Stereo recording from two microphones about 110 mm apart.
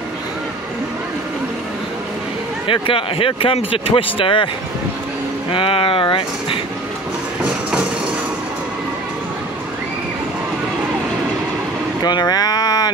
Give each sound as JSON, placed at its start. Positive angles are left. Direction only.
{"t": 2.6, "sound": "speech", "side_deg": 55}
{"t": 5.5, "sound": "speech", "side_deg": 50}
{"t": 12.0, "sound": "speech", "side_deg": 40}